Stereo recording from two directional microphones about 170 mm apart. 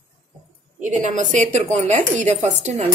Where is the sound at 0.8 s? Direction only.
45° right (ahead or behind).